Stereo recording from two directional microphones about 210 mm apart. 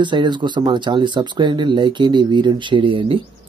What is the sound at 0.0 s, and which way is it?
Speech, 20° right (ahead or behind).